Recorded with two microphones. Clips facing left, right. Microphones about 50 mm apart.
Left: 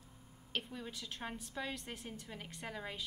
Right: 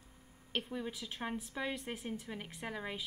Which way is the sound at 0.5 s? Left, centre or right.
Centre.